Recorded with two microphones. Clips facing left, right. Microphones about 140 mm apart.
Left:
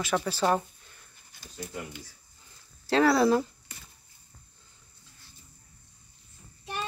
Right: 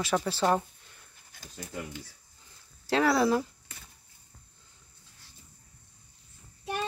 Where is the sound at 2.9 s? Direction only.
15° right (ahead or behind).